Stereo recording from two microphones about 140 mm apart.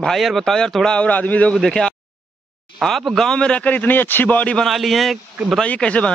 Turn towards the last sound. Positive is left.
turn(degrees=10)  # may be behind; listen again after turning